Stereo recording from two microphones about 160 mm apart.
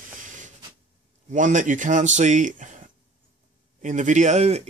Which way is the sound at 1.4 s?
50° right (ahead or behind).